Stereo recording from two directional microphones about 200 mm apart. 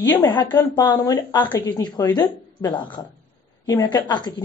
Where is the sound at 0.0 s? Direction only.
15° left (ahead or behind).